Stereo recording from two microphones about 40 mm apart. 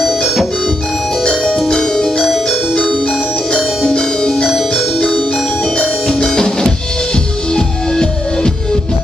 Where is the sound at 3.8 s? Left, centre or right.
Centre.